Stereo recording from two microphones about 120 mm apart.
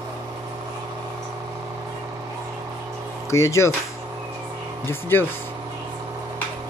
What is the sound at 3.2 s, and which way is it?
Speech, 25° left (ahead or behind).